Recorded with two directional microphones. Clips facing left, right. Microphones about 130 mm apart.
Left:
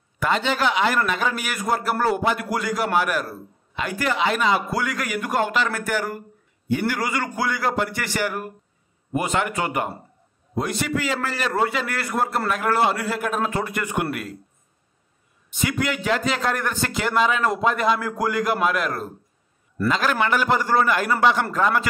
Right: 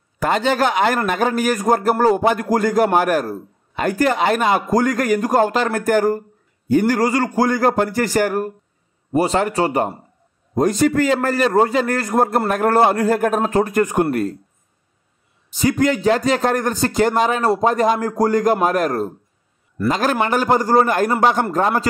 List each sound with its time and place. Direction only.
0.2 s a man's voice: 45° right (ahead or behind)
15.5 s a man's voice: 35° right (ahead or behind)